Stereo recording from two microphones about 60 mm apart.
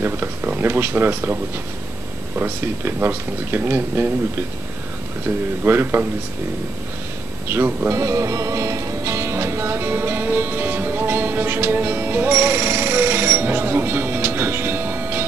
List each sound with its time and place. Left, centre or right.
0.0 s a sound: right
0.6 s speech: right
7.4 s speech: right
7.9 s music: right